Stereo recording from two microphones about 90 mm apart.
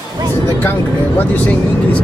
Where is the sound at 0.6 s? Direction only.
20° left (ahead or behind).